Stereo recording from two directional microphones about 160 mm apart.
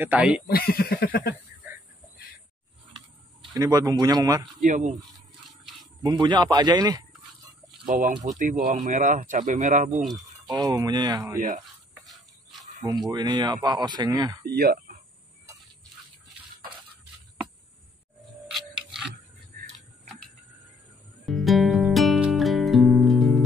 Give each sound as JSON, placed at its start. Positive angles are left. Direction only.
{"t": 0.0, "sound": "speech", "side_deg": -10}
{"t": 0.5, "sound": "a sound", "side_deg": 70}
{"t": 1.3, "sound": "a sound", "side_deg": -10}
{"t": 3.5, "sound": "speech", "side_deg": -20}
{"t": 4.6, "sound": "speech", "side_deg": -55}
{"t": 6.0, "sound": "speech", "side_deg": -25}
{"t": 8.2, "sound": "speech", "side_deg": -50}
{"t": 10.5, "sound": "speech", "side_deg": -20}
{"t": 12.8, "sound": "speech", "side_deg": -25}
{"t": 14.4, "sound": "speech", "side_deg": -75}
{"t": 21.3, "sound": "music", "side_deg": 0}